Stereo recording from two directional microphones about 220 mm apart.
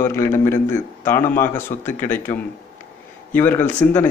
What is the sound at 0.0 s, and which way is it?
A man's voice, 10° left (ahead or behind).